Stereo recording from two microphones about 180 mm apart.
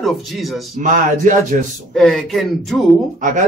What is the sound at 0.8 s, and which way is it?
Speech, 45° right (ahead or behind).